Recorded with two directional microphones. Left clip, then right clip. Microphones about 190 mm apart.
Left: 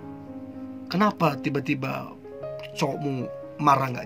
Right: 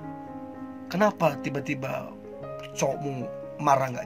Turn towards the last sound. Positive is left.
turn(degrees=5)  # may be behind; listen again after turning